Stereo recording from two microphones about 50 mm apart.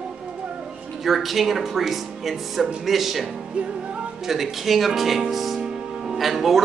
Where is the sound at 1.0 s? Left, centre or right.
Centre.